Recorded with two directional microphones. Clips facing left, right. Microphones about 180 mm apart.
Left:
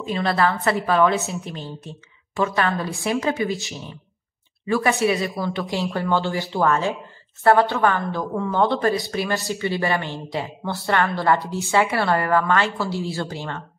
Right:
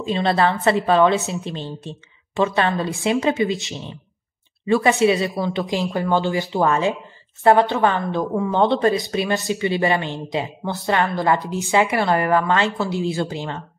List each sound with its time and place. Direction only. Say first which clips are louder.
0.0 s a woman's voice: right 2 dB; 25° right (ahead or behind)